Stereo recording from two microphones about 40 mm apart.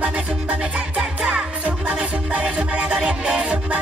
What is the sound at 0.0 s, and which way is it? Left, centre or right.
Music, right.